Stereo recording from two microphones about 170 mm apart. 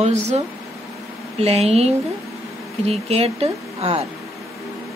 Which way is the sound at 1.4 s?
35° right (ahead or behind).